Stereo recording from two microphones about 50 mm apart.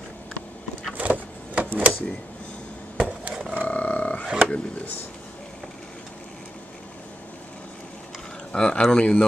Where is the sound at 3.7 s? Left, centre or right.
Left.